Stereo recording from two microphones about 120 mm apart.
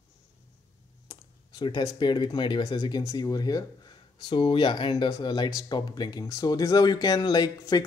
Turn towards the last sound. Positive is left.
turn(degrees=35)  # may be behind; listen again after turning